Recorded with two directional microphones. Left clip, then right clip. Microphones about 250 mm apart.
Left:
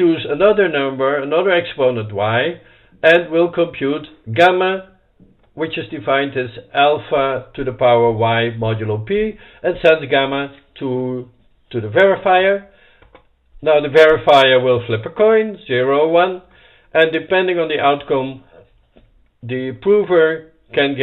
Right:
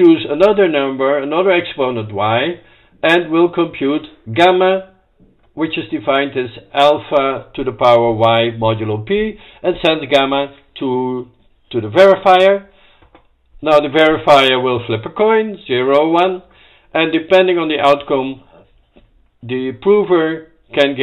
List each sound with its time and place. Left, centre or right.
0.1 s a man's voice: centre
13.6 s a man's voice: centre
19.4 s a man's voice: centre